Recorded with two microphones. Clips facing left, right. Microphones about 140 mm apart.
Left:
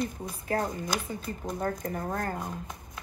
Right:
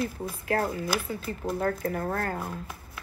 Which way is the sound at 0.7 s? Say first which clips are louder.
Right 3 dB; 20° left (ahead or behind).